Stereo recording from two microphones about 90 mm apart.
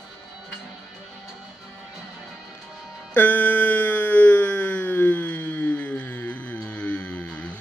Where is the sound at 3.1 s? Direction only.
20° left (ahead or behind).